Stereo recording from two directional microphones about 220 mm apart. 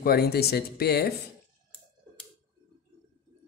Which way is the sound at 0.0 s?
45° left (ahead or behind).